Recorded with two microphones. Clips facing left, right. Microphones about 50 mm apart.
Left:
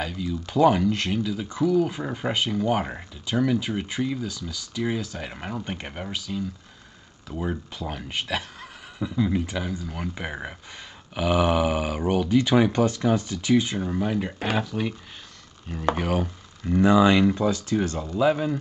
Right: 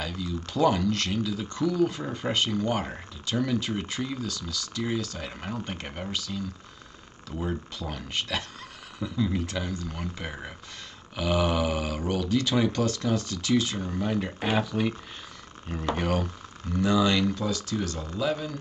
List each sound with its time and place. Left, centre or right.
0.5 s speech: centre
16.0 s speech: centre
16.6 s speech: left